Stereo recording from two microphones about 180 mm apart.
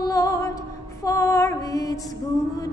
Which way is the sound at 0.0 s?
20° left (ahead or behind).